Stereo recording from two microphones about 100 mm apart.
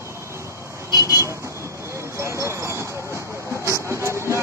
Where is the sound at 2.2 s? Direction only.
30° right (ahead or behind).